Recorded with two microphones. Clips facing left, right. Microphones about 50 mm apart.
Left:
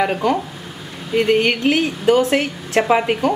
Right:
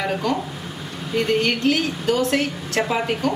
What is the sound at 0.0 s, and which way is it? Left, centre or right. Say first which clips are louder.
A woman's voice: left 5 dB; left.